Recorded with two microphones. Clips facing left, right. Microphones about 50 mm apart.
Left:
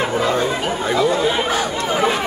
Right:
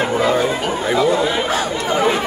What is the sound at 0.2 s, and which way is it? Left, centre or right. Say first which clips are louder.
Speech: right 2 dB; centre.